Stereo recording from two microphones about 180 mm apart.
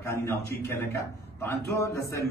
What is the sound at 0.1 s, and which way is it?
Speech, 15° left (ahead or behind).